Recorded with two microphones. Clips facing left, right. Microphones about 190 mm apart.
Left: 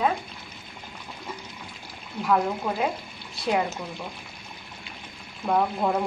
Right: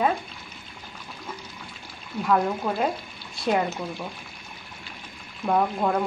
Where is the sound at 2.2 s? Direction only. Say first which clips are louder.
Right 1 dB; centre (ahead or behind).